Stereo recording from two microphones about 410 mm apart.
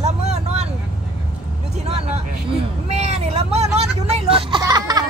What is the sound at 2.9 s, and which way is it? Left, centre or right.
Vehicle, centre.